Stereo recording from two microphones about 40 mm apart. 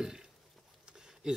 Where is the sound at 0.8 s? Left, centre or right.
Centre.